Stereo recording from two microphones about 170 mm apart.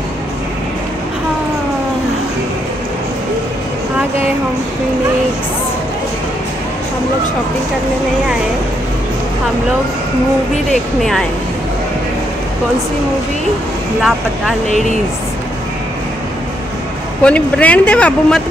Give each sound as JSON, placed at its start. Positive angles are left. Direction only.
{"t": 10.7, "sound": "speech", "side_deg": 0}
{"t": 14.7, "sound": "speech", "side_deg": 45}
{"t": 17.2, "sound": "speech", "side_deg": 10}